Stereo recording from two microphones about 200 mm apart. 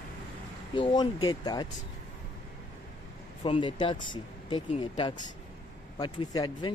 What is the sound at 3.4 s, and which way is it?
Speech, 25° left (ahead or behind).